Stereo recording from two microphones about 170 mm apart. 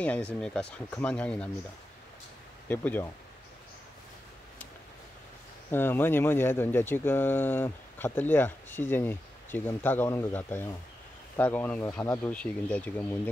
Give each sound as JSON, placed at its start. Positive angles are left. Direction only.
{"t": 0.0, "sound": "speech", "side_deg": 10}
{"t": 2.7, "sound": "speech", "side_deg": 10}
{"t": 5.7, "sound": "speech", "side_deg": 10}